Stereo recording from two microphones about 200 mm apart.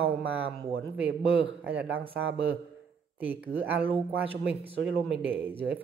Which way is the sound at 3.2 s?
10° right (ahead or behind).